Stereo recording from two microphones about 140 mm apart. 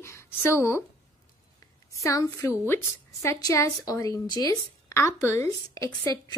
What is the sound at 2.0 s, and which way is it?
A woman's voice, 20° left (ahead or behind).